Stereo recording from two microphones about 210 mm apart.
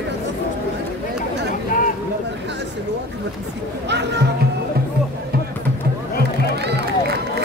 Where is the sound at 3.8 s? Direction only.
55° right (ahead or behind).